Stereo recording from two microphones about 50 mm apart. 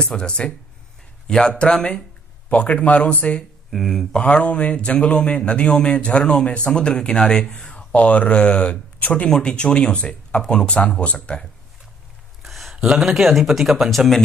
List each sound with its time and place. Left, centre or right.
0.1 s speech: centre
2.5 s a man's voice: left
3.7 s speech: centre
4.1 s a man's voice: left
9.3 s a man's voice: centre
12.4 s a sound: centre
12.7 s speech: centre